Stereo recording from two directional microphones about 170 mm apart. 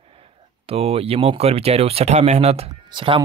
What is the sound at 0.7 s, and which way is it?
Speech, 35° right (ahead or behind).